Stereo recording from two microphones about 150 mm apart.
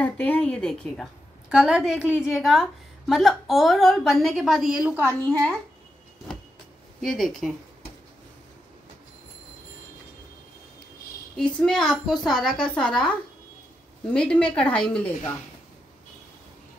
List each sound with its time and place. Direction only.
0.0 s a woman's voice: 10° left (ahead or behind)
4.8 s a woman's voice: 10° right (ahead or behind)
7.0 s a woman's voice: centre (ahead or behind)
11.3 s a woman's voice: 5° left (ahead or behind)
14.1 s a woman's voice: 5° left (ahead or behind)